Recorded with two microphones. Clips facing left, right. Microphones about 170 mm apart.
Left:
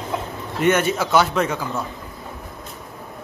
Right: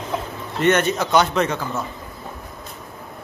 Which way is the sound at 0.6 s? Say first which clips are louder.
Even; 10° left (ahead or behind).